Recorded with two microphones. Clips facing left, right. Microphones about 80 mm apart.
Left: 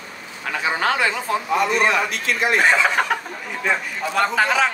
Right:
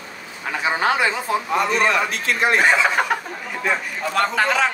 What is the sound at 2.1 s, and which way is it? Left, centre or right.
Speech, right.